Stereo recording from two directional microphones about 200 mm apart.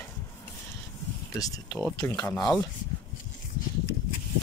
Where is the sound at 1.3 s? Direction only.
15° left (ahead or behind).